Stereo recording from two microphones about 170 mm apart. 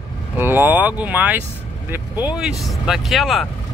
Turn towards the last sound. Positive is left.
turn(degrees=0)  # may be behind; listen again after turning